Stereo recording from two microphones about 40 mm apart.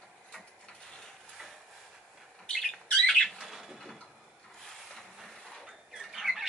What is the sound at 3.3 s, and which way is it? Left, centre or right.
Bird, centre.